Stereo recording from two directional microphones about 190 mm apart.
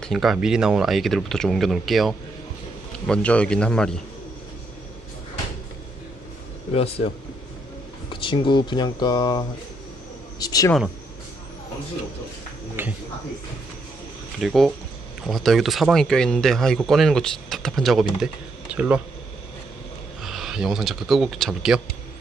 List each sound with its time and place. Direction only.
0.0 s speech: centre (ahead or behind)
6.7 s speech: 30° left (ahead or behind)
8.1 s speech: 25° left (ahead or behind)
12.8 s speech: 10° right (ahead or behind)
14.4 s speech: centre (ahead or behind)
20.2 s speech: centre (ahead or behind)